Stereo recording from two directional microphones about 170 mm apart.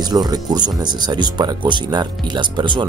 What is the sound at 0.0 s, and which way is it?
Speech, 25° right (ahead or behind).